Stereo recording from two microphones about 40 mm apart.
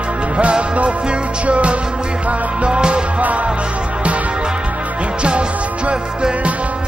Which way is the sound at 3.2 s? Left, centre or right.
Right.